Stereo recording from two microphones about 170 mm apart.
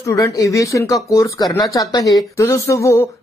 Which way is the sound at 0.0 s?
20° left (ahead or behind).